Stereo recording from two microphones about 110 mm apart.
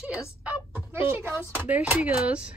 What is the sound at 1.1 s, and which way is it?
A woman's voice, 20° right (ahead or behind).